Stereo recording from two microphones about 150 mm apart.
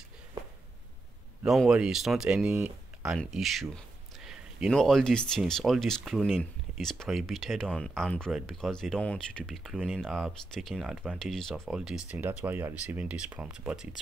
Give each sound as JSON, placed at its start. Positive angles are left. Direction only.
{"t": 1.4, "sound": "speech", "side_deg": -5}
{"t": 2.5, "sound": "speech", "side_deg": -15}
{"t": 3.1, "sound": "speech", "side_deg": 0}